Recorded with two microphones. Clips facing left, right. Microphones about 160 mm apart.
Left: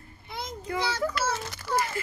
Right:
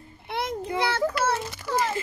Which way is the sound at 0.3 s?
65° right (ahead or behind).